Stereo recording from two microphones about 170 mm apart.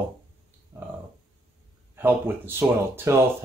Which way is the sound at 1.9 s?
10° right (ahead or behind).